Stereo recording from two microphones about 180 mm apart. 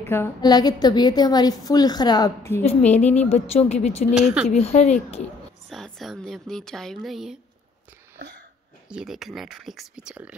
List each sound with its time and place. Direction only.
0.1 s a woman's voice: 15° left (ahead or behind)
2.6 s a woman's voice: 40° left (ahead or behind)
4.1 s speech: 5° right (ahead or behind)
4.5 s a woman's voice: 40° left (ahead or behind)
5.7 s speech: centre (ahead or behind)
8.8 s speech: 5° right (ahead or behind)